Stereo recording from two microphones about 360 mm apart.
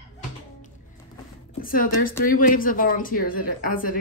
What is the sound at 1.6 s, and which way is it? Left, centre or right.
A woman's voice, left.